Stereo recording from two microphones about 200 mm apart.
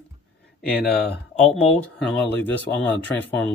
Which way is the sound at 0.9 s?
50° left (ahead or behind).